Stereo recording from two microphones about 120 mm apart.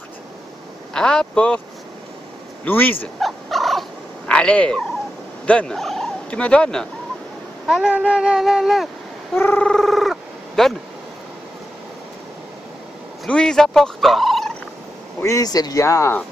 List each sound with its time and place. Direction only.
0.9 s a man's voice: 5° left (ahead or behind)
2.6 s a man's voice: 15° left (ahead or behind)
3.2 s fowl: centre (ahead or behind)
4.3 s speech: 10° left (ahead or behind)
5.5 s cat: 5° left (ahead or behind)
6.4 s a man's voice: 10° left (ahead or behind)
7.6 s speech: 5° right (ahead or behind)
9.4 s a sound: 10° left (ahead or behind)
13.2 s turkey: 5° left (ahead or behind)
15.2 s speech: 30° left (ahead or behind)